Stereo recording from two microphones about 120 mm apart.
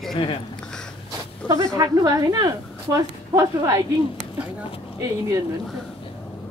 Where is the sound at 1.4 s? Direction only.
30° right (ahead or behind).